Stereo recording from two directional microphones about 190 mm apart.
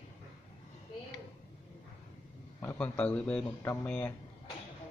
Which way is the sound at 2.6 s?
15° left (ahead or behind).